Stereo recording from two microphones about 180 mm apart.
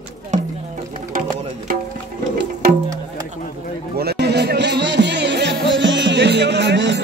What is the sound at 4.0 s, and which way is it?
Music, 65° right (ahead or behind).